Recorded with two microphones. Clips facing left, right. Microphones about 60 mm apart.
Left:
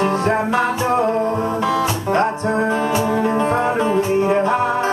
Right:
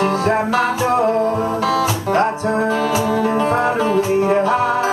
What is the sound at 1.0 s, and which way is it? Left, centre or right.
Music, centre.